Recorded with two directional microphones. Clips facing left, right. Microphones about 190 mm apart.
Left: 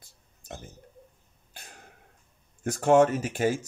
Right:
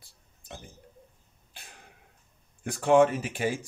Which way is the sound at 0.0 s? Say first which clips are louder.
Left 1 dB; 45° left (ahead or behind).